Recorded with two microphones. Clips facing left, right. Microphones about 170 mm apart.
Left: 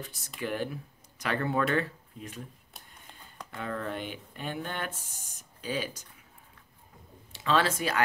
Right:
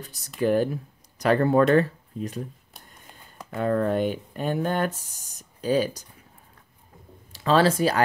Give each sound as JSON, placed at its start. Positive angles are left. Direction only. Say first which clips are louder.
{"t": 0.0, "sound": "speech", "louder": "right 11 dB", "side_deg": -40}
{"t": 3.4, "sound": "speech", "louder": "right 12 dB", "side_deg": -45}
{"t": 7.3, "sound": "speech", "louder": "right 7 dB", "side_deg": -35}